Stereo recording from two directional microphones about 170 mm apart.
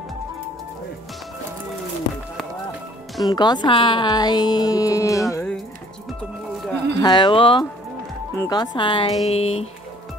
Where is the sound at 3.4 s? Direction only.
25° left (ahead or behind).